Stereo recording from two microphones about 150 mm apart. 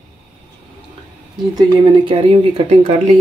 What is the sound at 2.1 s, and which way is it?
Speech, 40° right (ahead or behind).